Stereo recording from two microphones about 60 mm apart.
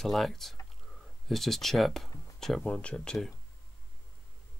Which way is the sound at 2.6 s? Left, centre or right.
Centre.